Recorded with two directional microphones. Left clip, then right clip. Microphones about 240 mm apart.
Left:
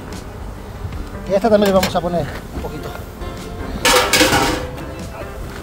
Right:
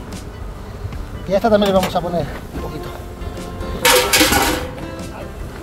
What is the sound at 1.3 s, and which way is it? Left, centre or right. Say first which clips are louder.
Speech: left 1 dB; centre.